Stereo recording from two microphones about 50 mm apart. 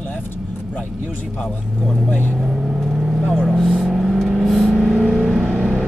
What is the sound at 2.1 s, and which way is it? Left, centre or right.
Speech, left.